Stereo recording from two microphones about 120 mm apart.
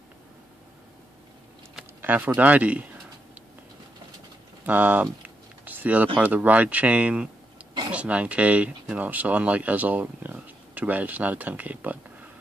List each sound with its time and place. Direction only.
2.0 s speech: 15° right (ahead or behind)
4.6 s speech: 15° right (ahead or behind)
5.7 s a sound: 15° right (ahead or behind)
6.1 s speech: 15° right (ahead or behind)